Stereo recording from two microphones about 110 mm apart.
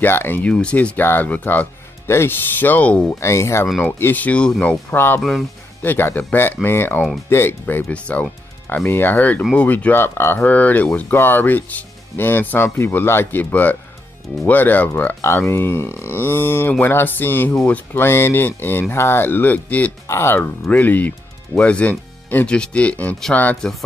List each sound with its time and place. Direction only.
0.0 s speech: 20° left (ahead or behind)
3.2 s speech: 25° left (ahead or behind)
3.8 s speech: 15° left (ahead or behind)